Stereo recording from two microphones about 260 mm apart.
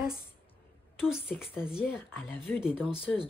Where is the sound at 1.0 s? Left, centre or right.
Centre.